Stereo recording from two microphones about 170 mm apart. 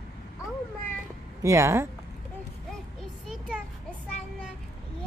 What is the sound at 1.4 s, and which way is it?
Speech, 15° right (ahead or behind).